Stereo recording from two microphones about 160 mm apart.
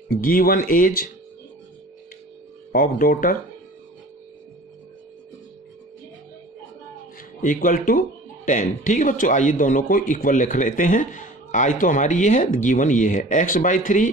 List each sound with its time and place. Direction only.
0.1 s speech: 60° left (ahead or behind)
2.7 s speech: 60° left (ahead or behind)
7.4 s a man's voice: 55° left (ahead or behind)